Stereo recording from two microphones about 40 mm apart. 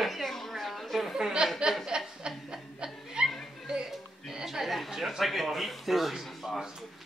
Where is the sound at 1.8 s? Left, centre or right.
Right.